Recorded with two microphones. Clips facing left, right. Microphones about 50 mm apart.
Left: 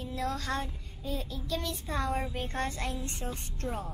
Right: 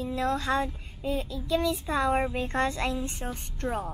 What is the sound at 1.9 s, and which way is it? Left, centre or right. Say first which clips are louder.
Speech: right 5 dB; right.